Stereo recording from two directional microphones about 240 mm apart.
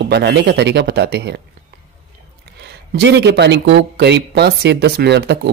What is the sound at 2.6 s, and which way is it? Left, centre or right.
Speech, right.